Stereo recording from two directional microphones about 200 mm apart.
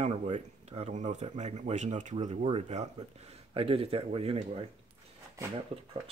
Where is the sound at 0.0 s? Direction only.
30° right (ahead or behind).